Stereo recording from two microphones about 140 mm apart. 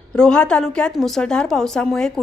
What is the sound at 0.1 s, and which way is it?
A woman's voice, 5° left (ahead or behind).